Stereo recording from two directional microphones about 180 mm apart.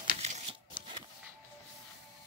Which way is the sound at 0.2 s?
40° right (ahead or behind).